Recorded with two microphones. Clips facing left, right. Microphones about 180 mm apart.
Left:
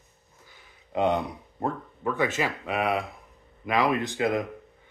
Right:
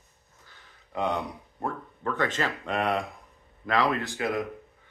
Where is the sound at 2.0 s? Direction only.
10° left (ahead or behind).